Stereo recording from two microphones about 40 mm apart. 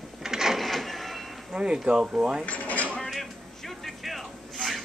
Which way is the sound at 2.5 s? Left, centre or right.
Left.